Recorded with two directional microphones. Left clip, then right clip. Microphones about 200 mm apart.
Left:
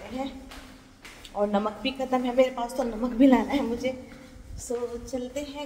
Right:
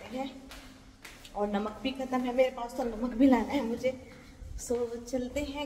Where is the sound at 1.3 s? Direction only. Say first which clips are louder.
Left 6 dB; 5° left (ahead or behind).